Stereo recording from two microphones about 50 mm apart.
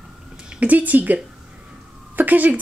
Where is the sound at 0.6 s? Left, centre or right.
Right.